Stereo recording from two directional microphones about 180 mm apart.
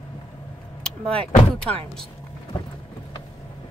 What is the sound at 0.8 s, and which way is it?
Vehicle, 5° left (ahead or behind).